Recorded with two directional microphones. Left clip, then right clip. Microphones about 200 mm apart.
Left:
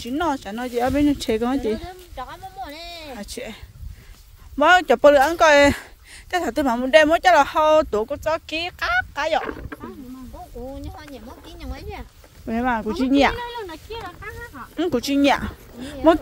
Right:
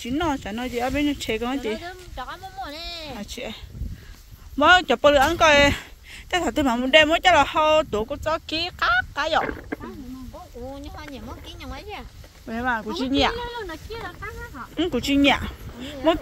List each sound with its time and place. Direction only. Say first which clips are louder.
0.0 s speech: left 2 dB; 35° left (ahead or behind)
1.9 s a sound: even; 65° left (ahead or behind)
3.1 s speech: even; 40° left (ahead or behind)
4.6 s speech: left 1 dB; 45° left (ahead or behind)
9.4 s speech: right 3 dB; 30° left (ahead or behind)
11.4 s a sound: even; 65° left (ahead or behind)
12.4 s speech: left 3 dB; 45° left (ahead or behind)
14.0 s speech: even; 15° left (ahead or behind)
14.8 s speech: left 1 dB; 40° left (ahead or behind)